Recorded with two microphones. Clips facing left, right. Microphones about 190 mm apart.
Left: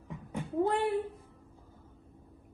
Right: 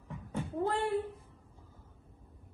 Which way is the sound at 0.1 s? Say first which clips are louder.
Left 2 dB; 15° left (ahead or behind).